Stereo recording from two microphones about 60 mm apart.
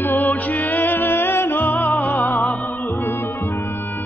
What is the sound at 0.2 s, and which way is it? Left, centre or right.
Music, left.